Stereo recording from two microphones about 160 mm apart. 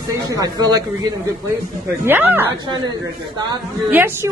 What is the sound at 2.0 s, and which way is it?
Speech, 15° right (ahead or behind).